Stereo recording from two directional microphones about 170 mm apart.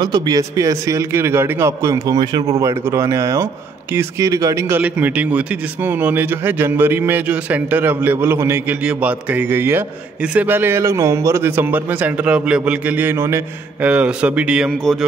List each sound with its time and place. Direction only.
0.0 s speech: 25° right (ahead or behind); by 15.0 s 5° left (ahead or behind)